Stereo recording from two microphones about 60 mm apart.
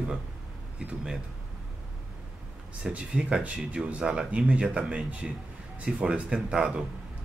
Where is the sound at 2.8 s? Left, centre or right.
Centre.